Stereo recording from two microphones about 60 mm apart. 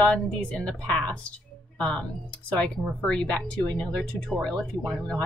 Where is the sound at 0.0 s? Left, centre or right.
Centre.